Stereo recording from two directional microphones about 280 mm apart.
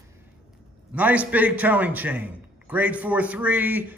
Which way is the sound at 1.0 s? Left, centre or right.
Centre.